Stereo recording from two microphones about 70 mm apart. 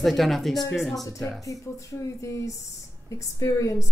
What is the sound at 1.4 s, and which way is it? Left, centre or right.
A woman's voice, left.